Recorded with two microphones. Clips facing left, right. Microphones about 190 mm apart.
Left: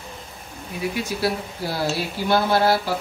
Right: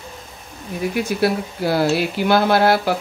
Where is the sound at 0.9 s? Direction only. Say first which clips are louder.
Right 6 dB; 60° right (ahead or behind).